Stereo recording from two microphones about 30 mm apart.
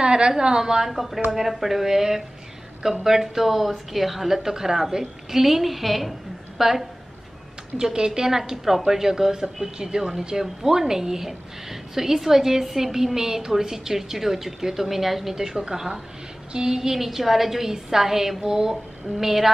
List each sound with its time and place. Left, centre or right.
0.0 s a sound: right
0.6 s a woman's voice: centre
0.9 s a woman's voice: centre
7.7 s a woman's voice: right
17.0 s a woman's voice: centre